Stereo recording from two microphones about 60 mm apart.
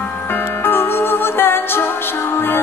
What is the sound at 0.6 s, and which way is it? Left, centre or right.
Music, left.